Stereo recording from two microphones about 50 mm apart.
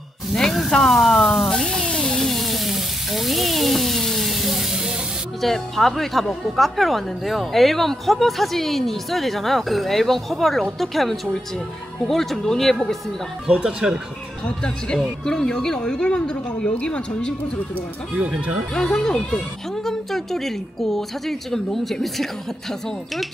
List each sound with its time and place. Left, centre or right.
0.3 s snake: centre
1.5 s sizzle: centre
1.9 s a sound: centre
2.1 s frying: centre
5.4 s speech: centre
13.5 s speech: centre
14.4 s speech: left
18.1 s speech: right
18.8 s speech: centre